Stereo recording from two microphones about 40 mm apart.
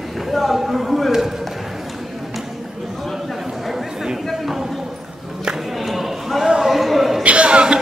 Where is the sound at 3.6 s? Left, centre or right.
Centre.